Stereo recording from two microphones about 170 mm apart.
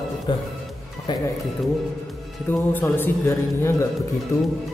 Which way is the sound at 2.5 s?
15° left (ahead or behind).